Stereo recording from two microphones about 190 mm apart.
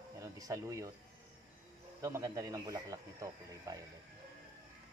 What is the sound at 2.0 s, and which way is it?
Speech, 15° right (ahead or behind).